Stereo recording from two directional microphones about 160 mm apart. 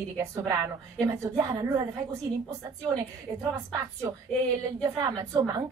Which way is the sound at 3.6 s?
20° right (ahead or behind).